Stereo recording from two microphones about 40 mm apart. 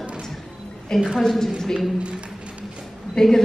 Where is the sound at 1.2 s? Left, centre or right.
Centre.